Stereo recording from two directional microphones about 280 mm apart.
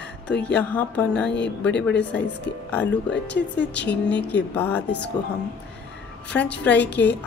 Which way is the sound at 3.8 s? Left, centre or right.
Centre.